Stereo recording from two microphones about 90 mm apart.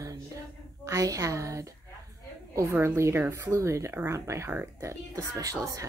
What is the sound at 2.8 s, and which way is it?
Speech, 30° right (ahead or behind).